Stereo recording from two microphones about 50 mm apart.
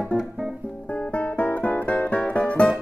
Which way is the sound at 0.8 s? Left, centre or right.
Left.